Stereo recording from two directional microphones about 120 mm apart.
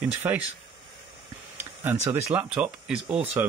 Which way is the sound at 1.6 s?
20° right (ahead or behind).